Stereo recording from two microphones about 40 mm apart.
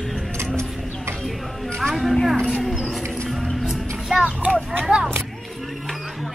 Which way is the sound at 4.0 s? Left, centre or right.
Centre.